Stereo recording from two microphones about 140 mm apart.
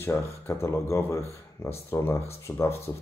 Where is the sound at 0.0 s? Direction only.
20° left (ahead or behind).